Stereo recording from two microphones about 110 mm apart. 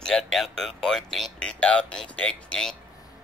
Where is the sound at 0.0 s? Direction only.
5° left (ahead or behind).